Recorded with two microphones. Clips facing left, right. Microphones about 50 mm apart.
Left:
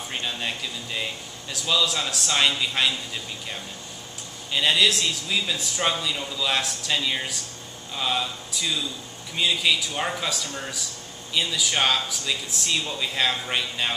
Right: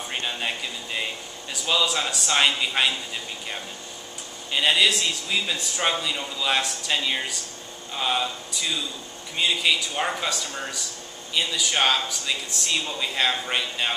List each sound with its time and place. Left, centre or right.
0.1 s a man's voice: centre
4.5 s a man's voice: centre